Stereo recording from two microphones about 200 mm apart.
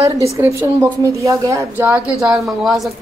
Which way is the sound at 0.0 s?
15° right (ahead or behind).